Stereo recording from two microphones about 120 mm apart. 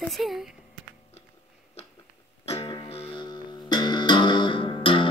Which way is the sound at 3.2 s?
35° left (ahead or behind).